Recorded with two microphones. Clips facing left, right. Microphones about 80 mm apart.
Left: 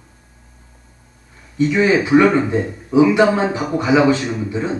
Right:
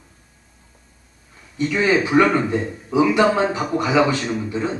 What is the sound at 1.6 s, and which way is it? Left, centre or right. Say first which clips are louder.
A man's voice: left 3 dB; centre.